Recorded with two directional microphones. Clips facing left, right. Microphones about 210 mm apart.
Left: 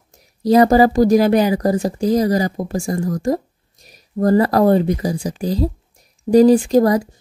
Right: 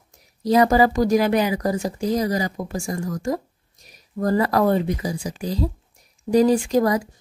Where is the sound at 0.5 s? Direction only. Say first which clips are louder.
Left 5 dB; 35° left (ahead or behind).